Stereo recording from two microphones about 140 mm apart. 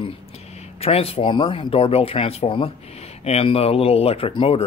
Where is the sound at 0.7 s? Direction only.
45° left (ahead or behind).